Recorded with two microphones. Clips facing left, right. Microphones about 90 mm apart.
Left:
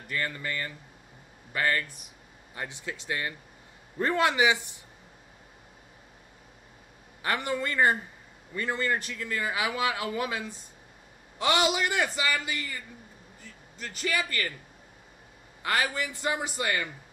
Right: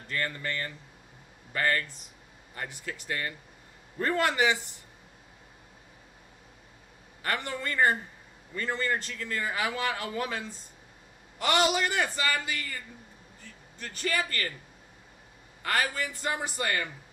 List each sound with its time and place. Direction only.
0.1 s a man's voice: 15° left (ahead or behind)
7.2 s a man's voice: 20° left (ahead or behind)
14.1 s a man's voice: 20° left (ahead or behind)
15.6 s a man's voice: 20° left (ahead or behind)